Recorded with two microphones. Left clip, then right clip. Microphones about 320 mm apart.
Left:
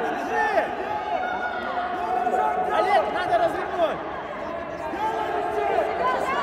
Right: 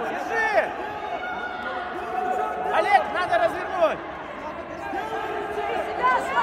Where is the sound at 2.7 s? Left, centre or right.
Right.